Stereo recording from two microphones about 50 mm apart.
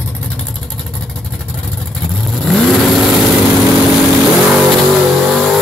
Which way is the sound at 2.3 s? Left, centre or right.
Centre.